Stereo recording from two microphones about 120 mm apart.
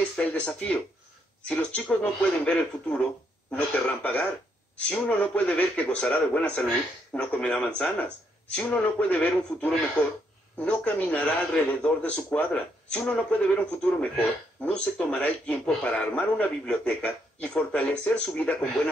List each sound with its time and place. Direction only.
0.2 s a man's voice: 10° left (ahead or behind)